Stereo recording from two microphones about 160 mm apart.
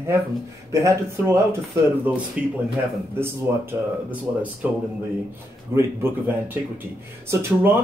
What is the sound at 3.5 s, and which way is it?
Speech, 15° right (ahead or behind).